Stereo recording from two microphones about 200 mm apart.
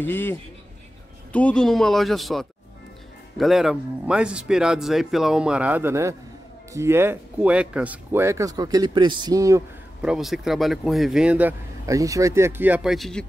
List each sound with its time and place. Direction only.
0.0 s a man's voice: 10° left (ahead or behind); by 9.6 s 15° right (ahead or behind)
10.0 s speech: centre (ahead or behind)